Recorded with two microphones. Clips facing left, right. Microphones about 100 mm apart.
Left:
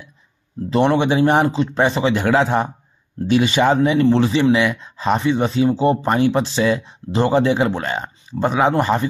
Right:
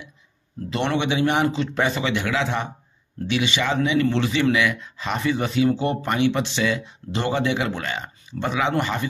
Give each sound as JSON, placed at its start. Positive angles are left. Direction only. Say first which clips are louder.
{"t": 0.7, "sound": "speech", "louder": "left 7 dB", "side_deg": 35}